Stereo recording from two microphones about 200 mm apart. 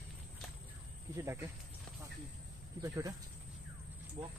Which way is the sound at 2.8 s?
15° right (ahead or behind).